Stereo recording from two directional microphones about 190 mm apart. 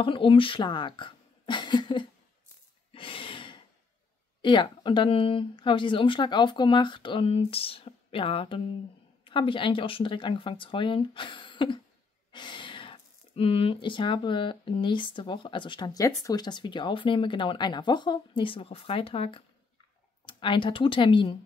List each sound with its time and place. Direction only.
0.0 s speech: 25° left (ahead or behind)
2.9 s snort: 30° left (ahead or behind)
4.4 s speech: 25° left (ahead or behind)